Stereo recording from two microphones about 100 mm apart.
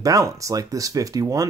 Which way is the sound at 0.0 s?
35° right (ahead or behind).